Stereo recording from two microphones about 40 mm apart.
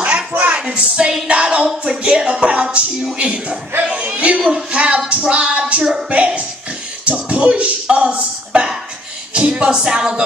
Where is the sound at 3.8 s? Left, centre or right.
Right.